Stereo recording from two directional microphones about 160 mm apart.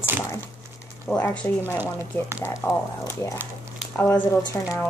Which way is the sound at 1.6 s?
10° right (ahead or behind).